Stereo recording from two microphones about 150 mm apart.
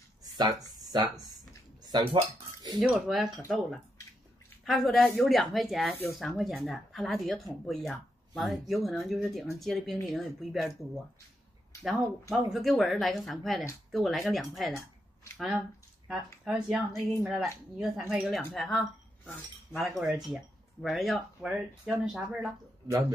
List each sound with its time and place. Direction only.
0.2 s speech: 25° right (ahead or behind)
2.8 s speech: centre (ahead or behind)
4.6 s speech: centre (ahead or behind)